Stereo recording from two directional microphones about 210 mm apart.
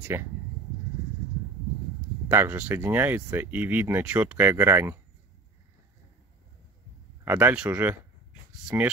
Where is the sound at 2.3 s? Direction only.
10° right (ahead or behind).